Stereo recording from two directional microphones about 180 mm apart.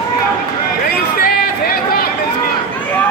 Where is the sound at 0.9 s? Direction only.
55° left (ahead or behind).